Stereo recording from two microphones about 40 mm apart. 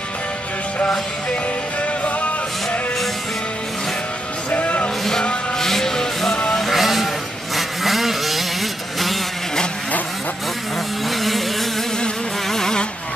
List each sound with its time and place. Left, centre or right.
4.5 s music: left
5.6 s music: centre
6.7 s vehicle: centre
11.1 s vehicle: centre
12.4 s insect: centre